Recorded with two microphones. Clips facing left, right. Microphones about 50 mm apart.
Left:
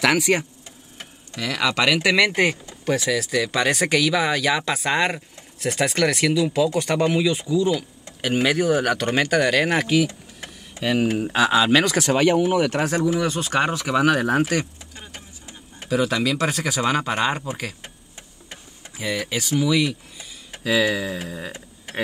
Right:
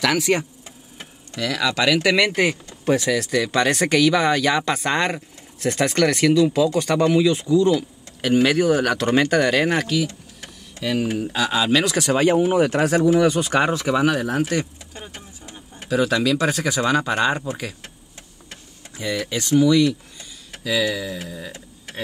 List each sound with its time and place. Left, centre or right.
0.0 s speech: centre
10.0 s vehicle: centre
11.1 s speech: left
12.4 s speech: right
13.5 s speech: centre
13.8 s speech: centre
15.9 s speech: centre
18.9 s speech: centre
20.6 s speech: left
21.5 s a sound: centre